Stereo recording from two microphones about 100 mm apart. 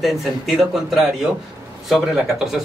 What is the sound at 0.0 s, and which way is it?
A man's voice, centre (ahead or behind).